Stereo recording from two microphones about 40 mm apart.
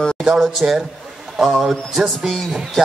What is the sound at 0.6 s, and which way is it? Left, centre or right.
Speech, centre.